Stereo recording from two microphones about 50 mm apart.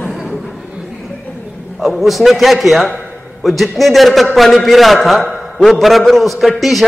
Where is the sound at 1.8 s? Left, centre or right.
Centre.